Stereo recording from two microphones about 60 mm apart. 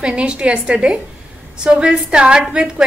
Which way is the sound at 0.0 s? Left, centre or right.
Centre.